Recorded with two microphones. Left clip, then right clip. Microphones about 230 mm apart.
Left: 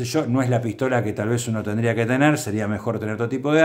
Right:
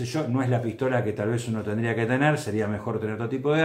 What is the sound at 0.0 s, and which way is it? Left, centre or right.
Speech, left.